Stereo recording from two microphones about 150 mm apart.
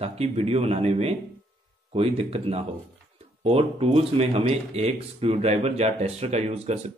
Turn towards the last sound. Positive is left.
turn(degrees=-45)  # may be behind; listen again after turning